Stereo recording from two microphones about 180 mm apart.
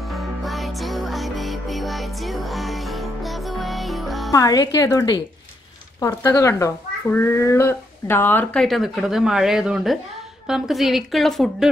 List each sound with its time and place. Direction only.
0.1 s music: centre (ahead or behind)
4.3 s a child's voice: 20° left (ahead or behind)
8.6 s speech: centre (ahead or behind)